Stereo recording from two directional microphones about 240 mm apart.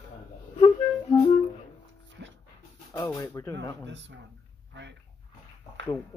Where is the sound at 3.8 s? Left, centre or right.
Right.